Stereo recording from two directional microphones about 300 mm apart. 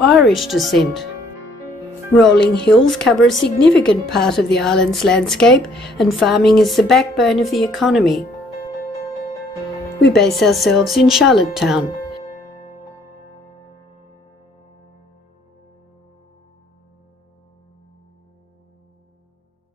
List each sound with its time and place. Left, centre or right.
0.1 s a woman's voice: centre
2.1 s a woman's voice: centre
2.4 s speech: left
2.7 s a woman's voice: centre
9.9 s speech: left
10.2 s speech: centre